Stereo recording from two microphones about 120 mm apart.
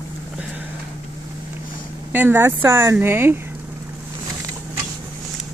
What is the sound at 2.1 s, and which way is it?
Speech, 20° right (ahead or behind).